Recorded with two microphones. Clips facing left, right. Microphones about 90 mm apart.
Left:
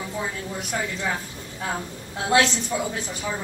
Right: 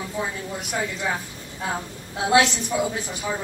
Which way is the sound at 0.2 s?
10° right (ahead or behind).